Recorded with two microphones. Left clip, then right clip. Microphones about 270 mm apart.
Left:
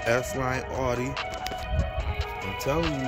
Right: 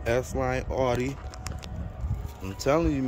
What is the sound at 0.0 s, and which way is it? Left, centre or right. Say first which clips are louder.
Speech: left 1 dB; centre.